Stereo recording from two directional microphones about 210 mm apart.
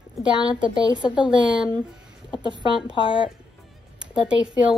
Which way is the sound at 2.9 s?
25° left (ahead or behind).